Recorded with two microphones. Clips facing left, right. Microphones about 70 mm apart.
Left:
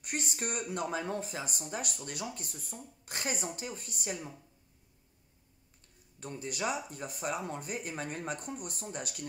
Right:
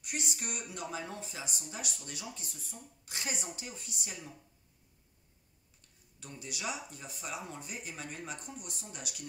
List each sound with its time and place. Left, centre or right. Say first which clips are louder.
0.0 s speech: left 3 dB; left
6.1 s speech: left 7 dB; left